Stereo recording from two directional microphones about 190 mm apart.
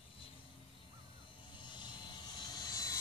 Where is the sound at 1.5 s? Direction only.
25° left (ahead or behind).